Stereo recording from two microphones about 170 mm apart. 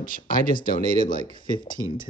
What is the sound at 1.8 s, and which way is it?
Speech, 15° left (ahead or behind).